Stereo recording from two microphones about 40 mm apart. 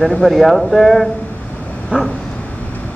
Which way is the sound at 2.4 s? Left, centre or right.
Left.